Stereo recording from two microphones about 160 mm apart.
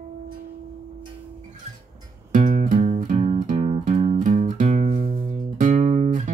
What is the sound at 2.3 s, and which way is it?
Music, 55° right (ahead or behind).